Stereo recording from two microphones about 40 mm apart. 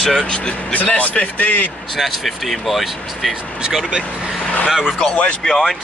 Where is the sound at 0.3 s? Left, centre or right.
Left.